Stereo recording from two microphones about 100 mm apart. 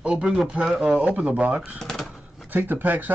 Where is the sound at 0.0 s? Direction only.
10° right (ahead or behind).